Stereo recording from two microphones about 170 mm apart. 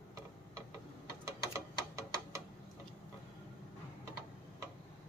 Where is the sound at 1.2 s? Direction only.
20° right (ahead or behind).